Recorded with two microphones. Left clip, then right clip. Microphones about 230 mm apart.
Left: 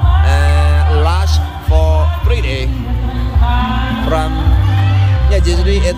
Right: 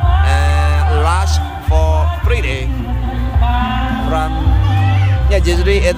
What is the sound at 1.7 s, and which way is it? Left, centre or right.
Music, centre.